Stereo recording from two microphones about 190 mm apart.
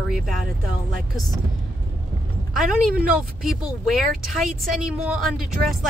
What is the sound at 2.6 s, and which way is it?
Speech, 5° right (ahead or behind).